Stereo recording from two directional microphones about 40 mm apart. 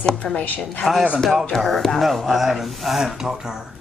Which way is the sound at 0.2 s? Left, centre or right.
Left.